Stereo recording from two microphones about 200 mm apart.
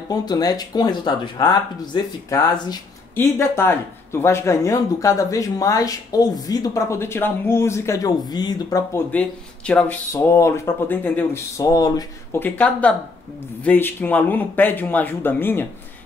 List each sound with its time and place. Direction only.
0.1 s speech: 20° left (ahead or behind)